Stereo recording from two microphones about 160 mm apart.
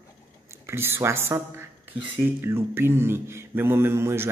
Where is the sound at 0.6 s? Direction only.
15° right (ahead or behind).